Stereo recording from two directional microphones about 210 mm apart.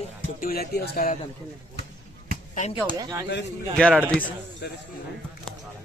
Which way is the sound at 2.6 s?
35° left (ahead or behind).